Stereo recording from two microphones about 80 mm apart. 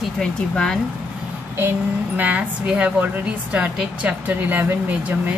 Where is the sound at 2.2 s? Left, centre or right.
Centre.